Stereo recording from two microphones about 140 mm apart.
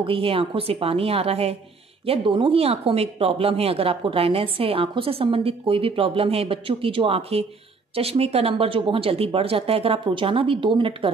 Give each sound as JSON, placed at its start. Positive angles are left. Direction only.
{"t": 0.0, "sound": "speech", "side_deg": -40}